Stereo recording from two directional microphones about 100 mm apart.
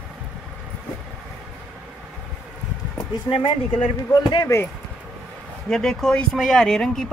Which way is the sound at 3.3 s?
55° left (ahead or behind).